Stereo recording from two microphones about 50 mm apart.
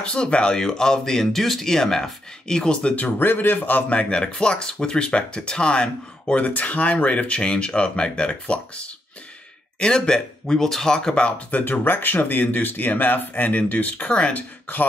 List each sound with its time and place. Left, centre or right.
0.0 s speech: centre
3.2 s speech: left
3.9 s speech: left
11.2 s speech: left
11.6 s speech: left